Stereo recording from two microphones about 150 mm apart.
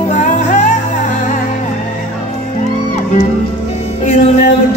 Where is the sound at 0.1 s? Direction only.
55° left (ahead or behind).